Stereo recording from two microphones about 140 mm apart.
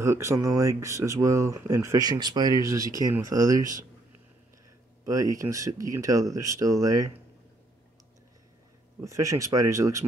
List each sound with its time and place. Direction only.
0.0 s speech: 20° right (ahead or behind)
5.0 s speech: 25° right (ahead or behind)
9.0 s speech: 20° right (ahead or behind)